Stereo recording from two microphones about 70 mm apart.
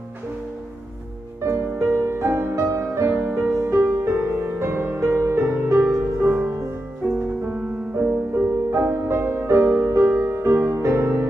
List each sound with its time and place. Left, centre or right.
1.4 s music: right
7.0 s music: centre; by 11.2 s right